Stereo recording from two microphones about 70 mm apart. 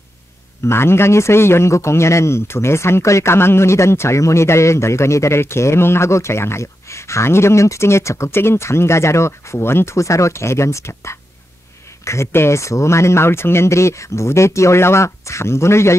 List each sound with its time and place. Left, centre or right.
0.7 s a man's voice: left